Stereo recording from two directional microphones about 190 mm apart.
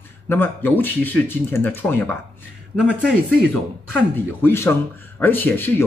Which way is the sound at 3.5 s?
10° left (ahead or behind).